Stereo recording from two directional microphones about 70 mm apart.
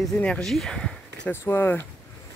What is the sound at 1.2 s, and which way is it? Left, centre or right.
Speech, left.